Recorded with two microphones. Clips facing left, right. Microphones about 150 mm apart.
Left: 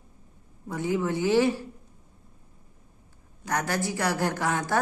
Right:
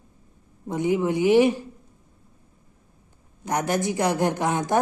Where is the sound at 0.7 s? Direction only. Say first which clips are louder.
Right 4 dB; 20° right (ahead or behind).